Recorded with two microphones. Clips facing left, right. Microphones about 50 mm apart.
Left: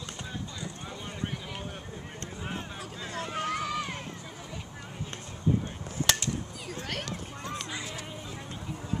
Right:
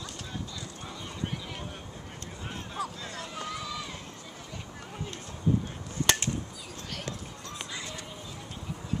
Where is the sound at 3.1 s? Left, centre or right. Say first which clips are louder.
Left 7 dB; left.